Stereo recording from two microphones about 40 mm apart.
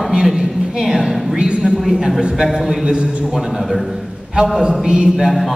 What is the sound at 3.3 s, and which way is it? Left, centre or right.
Speech, centre.